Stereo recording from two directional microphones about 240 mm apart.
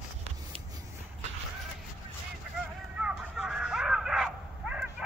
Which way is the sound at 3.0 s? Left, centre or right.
Centre.